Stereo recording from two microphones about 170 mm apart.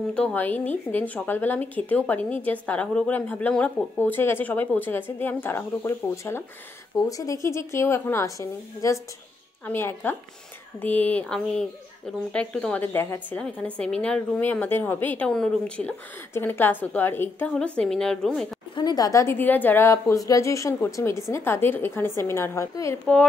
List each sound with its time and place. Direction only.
0.1 s speech: 10° left (ahead or behind)
18.8 s speech: 25° left (ahead or behind)